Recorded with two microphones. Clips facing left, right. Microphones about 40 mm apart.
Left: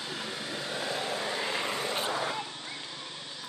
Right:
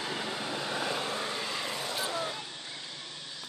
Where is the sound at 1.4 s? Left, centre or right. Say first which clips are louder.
Left 3 dB; left.